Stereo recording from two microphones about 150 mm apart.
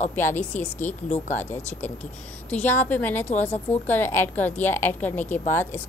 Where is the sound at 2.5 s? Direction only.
10° left (ahead or behind).